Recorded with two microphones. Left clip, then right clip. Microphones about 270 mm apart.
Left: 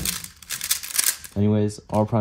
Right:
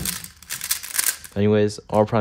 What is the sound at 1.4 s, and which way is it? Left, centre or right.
Speech, left.